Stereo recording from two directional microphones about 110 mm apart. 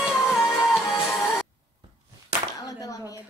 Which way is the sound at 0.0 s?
5° right (ahead or behind).